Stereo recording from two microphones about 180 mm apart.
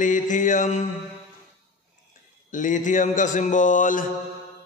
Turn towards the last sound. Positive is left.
turn(degrees=45)  # may be behind; listen again after turning